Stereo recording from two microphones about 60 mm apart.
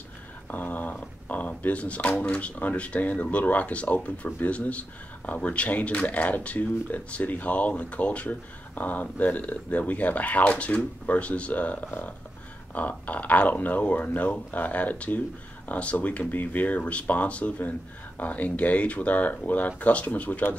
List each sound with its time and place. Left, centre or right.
0.5 s speech: left